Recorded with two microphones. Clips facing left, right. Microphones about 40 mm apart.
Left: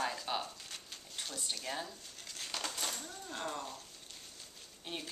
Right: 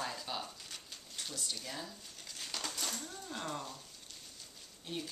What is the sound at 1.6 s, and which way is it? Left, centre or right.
Speech, left.